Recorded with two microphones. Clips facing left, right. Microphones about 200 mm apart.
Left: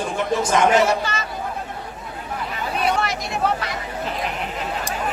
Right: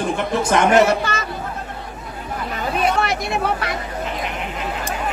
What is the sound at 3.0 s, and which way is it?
Chatter, 60° right (ahead or behind).